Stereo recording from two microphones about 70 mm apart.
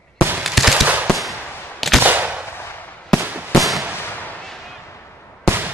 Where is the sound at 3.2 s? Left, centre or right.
Right.